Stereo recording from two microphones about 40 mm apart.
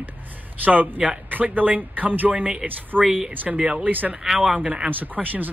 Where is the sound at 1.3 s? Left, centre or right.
Right.